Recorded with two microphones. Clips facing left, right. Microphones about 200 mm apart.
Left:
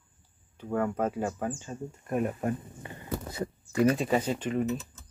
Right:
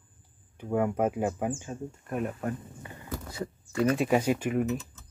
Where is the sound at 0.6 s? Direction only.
10° right (ahead or behind).